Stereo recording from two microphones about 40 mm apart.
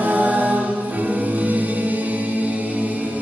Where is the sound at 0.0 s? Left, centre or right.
Right.